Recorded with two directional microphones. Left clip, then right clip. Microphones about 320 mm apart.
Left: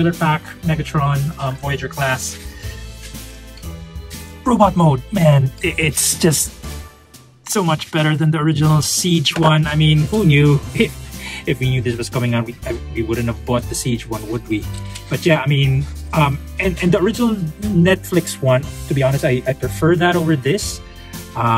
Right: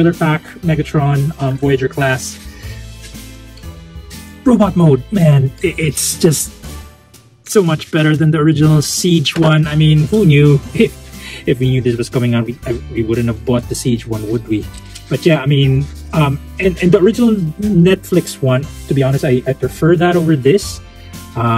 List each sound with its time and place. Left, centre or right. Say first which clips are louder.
0.2 s speech: right 2 dB; centre
4.5 s speech: right 2 dB; centre
7.4 s speech: right 5 dB; centre